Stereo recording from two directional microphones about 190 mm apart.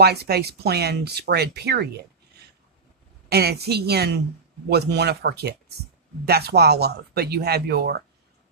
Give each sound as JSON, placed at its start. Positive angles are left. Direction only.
{"t": 0.0, "sound": "speech", "side_deg": -55}
{"t": 3.3, "sound": "speech", "side_deg": -55}